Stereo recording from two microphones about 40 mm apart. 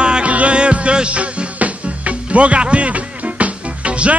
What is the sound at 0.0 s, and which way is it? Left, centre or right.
Music, right.